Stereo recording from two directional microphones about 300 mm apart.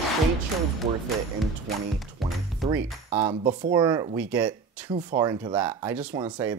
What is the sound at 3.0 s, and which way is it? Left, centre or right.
Speech, right.